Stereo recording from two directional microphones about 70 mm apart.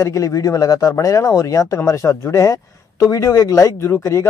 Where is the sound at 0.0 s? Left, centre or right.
Left.